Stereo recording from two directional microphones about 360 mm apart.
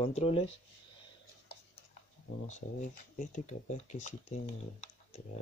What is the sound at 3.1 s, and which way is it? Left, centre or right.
Speech, left.